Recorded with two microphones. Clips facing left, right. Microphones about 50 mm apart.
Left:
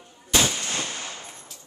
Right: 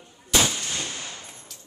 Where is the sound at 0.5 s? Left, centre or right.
Left.